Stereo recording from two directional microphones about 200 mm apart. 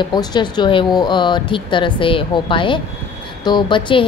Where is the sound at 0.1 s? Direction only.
20° left (ahead or behind).